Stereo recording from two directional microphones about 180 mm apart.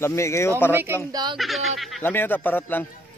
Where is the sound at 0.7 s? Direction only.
10° right (ahead or behind).